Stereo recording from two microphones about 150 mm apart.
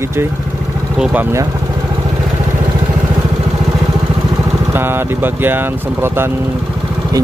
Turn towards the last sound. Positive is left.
turn(degrees=-15)  # may be behind; listen again after turning